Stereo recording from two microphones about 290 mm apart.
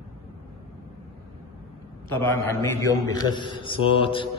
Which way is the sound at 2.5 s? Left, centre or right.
Centre.